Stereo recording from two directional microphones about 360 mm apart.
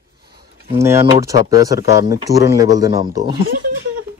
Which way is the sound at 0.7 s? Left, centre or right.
Centre.